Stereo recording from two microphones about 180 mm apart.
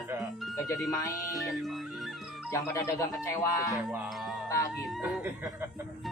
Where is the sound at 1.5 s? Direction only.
Centre (ahead or behind).